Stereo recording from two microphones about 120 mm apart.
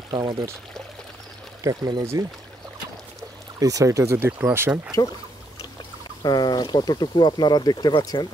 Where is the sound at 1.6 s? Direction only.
30° right (ahead or behind).